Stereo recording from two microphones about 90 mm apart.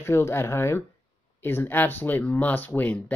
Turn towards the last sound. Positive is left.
turn(degrees=15)  # may be behind; listen again after turning